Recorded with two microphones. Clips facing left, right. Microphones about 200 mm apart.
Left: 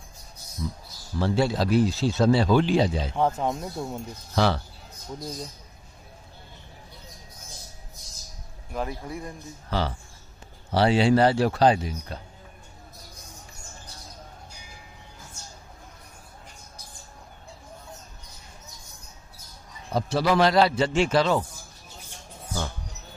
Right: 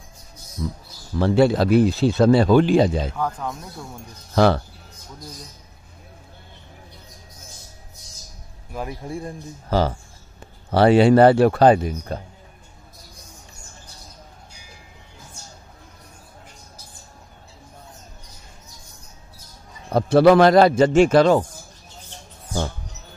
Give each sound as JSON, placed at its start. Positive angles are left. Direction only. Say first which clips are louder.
{"t": 1.2, "sound": "speech", "louder": "right 7 dB", "side_deg": -60}
{"t": 3.2, "sound": "speech", "louder": "left 3 dB", "side_deg": 25}
{"t": 4.4, "sound": "a man's voice", "louder": "right 7 dB", "side_deg": -50}
{"t": 9.0, "sound": "speech", "louder": "right 5 dB", "side_deg": -30}
{"t": 9.7, "sound": "a man's voice", "louder": "right 7 dB", "side_deg": -45}
{"t": 10.7, "sound": "speech", "louder": "right 6 dB", "side_deg": -55}
{"t": 19.9, "sound": "a man's voice", "louder": "right 10 dB", "side_deg": -60}